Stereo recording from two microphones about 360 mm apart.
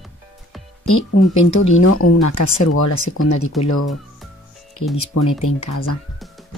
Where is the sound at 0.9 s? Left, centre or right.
Left.